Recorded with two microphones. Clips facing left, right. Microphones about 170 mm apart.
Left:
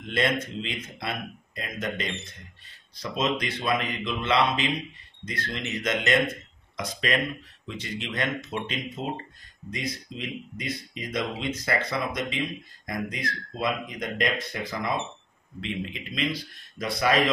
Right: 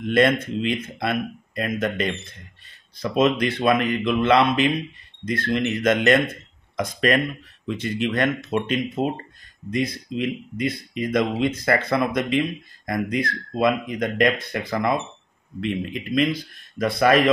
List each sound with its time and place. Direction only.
0.1 s a man's voice: 55° right (ahead or behind)